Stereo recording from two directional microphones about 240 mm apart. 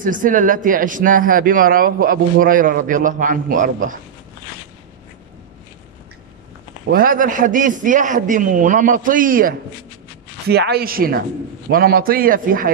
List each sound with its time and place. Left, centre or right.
0.0 s a man's voice: right
6.9 s a man's voice: right